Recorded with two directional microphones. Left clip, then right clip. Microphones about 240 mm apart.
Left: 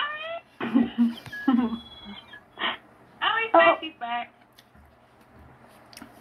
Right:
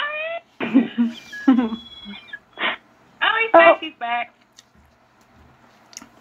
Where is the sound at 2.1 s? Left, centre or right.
Right.